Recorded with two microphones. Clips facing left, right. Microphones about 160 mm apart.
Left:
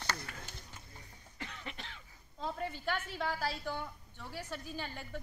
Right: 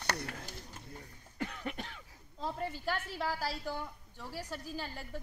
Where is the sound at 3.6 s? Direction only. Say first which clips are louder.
Even; 5° right (ahead or behind).